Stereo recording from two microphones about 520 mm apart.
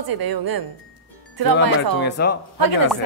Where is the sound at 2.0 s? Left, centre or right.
Centre.